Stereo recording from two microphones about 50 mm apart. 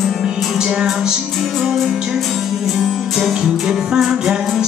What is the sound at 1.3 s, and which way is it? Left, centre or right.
Music, centre.